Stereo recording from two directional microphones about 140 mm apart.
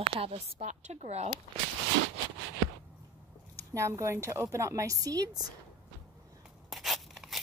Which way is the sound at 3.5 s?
20° right (ahead or behind).